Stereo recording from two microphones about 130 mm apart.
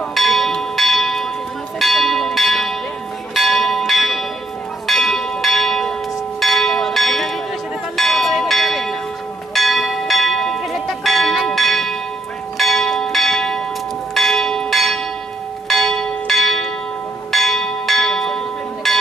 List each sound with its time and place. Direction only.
0.1 s church bell: centre (ahead or behind)
18.8 s music: centre (ahead or behind)